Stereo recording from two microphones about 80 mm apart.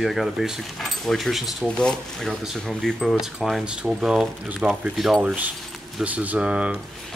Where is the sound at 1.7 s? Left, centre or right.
Centre.